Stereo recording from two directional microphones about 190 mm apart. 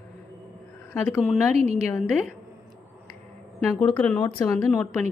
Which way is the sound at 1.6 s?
35° right (ahead or behind).